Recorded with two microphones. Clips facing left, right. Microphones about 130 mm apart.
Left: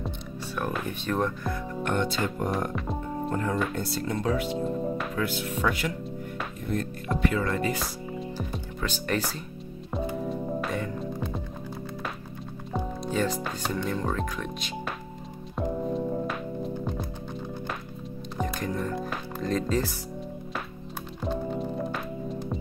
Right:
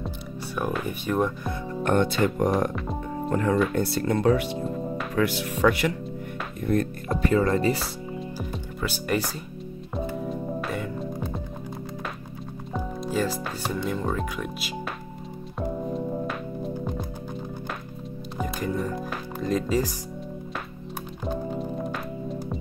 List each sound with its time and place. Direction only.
0.7 s speech: 10° right (ahead or behind)
2.0 s speech: 65° right (ahead or behind); by 3.5 s 90° right
3.7 s speech: 60° right (ahead or behind)
4.6 s music: centre (ahead or behind)
5.1 s speech: 75° right (ahead or behind)
7.1 s speech: 40° right (ahead or behind)
8.4 s speech: 10° right (ahead or behind)
10.2 s music: centre (ahead or behind)
12.7 s speech: 5° right (ahead or behind)
15.5 s music: centre (ahead or behind)
18.4 s music: 5° right (ahead or behind)
21.2 s music: 5° right (ahead or behind)